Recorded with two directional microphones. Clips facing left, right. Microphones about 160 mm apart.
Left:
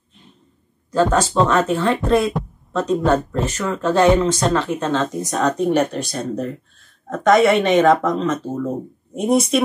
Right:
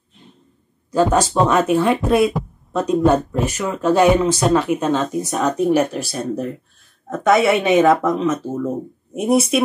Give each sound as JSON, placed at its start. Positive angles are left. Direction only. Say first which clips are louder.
{"t": 0.9, "sound": "speech", "louder": "right 1 dB", "side_deg": -10}